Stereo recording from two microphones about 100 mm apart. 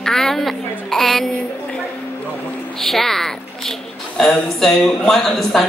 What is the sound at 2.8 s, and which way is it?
A woman's voice, 5° left (ahead or behind).